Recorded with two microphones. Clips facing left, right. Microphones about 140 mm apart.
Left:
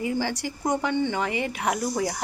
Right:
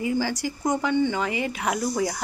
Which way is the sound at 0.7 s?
20° left (ahead or behind).